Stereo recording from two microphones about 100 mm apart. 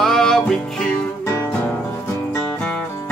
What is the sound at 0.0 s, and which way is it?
Music, 5° left (ahead or behind).